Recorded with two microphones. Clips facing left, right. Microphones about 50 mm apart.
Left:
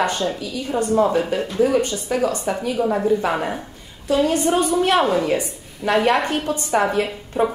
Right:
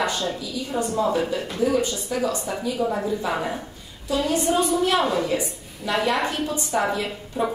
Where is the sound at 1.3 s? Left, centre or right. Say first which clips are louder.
Left 4 dB; left.